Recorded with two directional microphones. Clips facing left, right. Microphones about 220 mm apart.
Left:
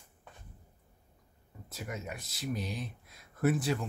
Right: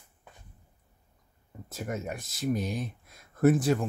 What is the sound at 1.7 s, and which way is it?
Speech, 45° right (ahead or behind).